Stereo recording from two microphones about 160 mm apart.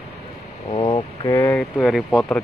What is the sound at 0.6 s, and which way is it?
Speech, 35° left (ahead or behind).